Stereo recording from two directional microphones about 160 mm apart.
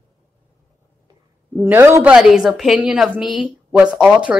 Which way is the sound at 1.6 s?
15° right (ahead or behind).